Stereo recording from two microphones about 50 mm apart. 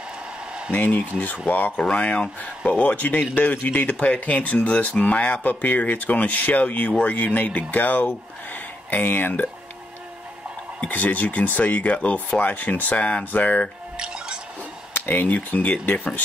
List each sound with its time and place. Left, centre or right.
0.7 s speech: left
1.8 s speech: left
10.9 s speech: left
13.9 s drip: centre
15.0 s speech: left